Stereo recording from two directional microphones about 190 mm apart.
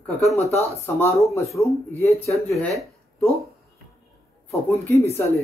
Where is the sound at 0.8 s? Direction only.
15° left (ahead or behind).